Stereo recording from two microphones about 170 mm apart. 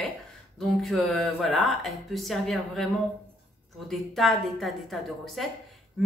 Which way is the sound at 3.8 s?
Centre (ahead or behind).